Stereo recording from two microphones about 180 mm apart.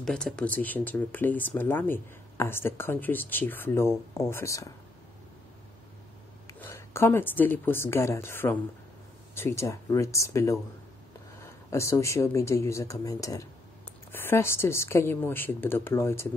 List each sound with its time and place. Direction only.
0.0 s speech: 5° left (ahead or behind)
6.6 s speech: 15° left (ahead or behind)